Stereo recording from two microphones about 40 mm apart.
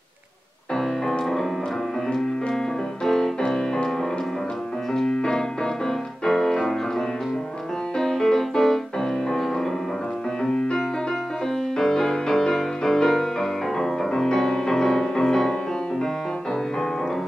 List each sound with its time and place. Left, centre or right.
3.0 s music: centre
4.9 s music: centre